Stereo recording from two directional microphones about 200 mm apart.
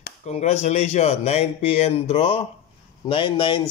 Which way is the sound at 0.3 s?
35° left (ahead or behind).